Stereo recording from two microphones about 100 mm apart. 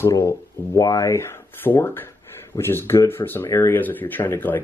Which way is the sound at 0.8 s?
40° left (ahead or behind).